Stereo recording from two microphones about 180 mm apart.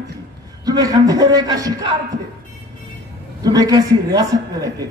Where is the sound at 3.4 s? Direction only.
20° right (ahead or behind).